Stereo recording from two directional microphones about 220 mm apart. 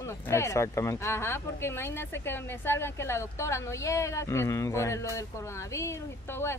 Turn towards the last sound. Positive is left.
turn(degrees=10)  # may be behind; listen again after turning